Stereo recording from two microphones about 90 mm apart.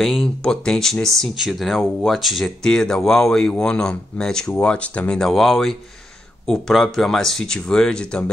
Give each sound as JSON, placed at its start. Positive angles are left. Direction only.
{"t": 0.0, "sound": "speech", "side_deg": 0}